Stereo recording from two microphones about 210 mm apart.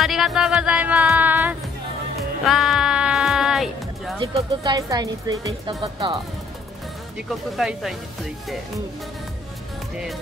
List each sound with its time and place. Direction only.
0.0 s music: centre (ahead or behind)
4.2 s speech: 20° right (ahead or behind)
7.2 s speech: centre (ahead or behind)